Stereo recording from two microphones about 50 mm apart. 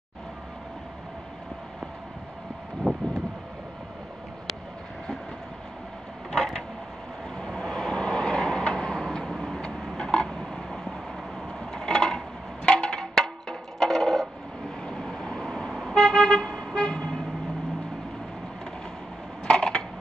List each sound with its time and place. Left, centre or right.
2.8 s wind: centre
6.3 s a sound: centre
7.3 s vehicle: centre
9.6 s vehicle: centre
11.7 s a sound: centre
12.6 s music: centre
14.9 s vehicle: centre
19.4 s crushing: centre